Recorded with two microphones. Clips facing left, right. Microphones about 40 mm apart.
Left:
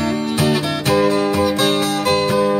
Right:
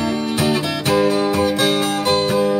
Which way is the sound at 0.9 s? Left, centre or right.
Left.